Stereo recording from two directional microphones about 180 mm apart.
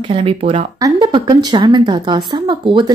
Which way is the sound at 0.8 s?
20° right (ahead or behind).